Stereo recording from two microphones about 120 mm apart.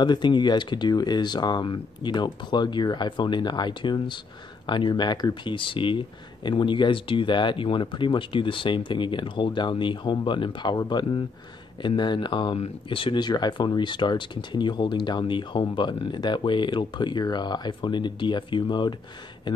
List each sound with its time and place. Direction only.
0.0 s speech: 40° left (ahead or behind)
12.5 s speech: 50° left (ahead or behind)